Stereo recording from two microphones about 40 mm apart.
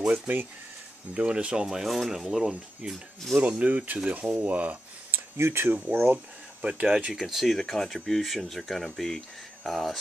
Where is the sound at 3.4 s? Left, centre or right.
Right.